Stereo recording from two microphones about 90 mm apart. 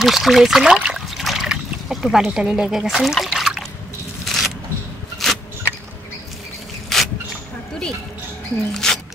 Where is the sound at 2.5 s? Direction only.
5° right (ahead or behind).